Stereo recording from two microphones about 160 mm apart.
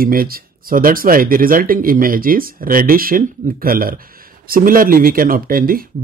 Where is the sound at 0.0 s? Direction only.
65° right (ahead or behind).